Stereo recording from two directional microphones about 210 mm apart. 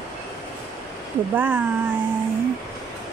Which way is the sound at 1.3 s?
10° right (ahead or behind).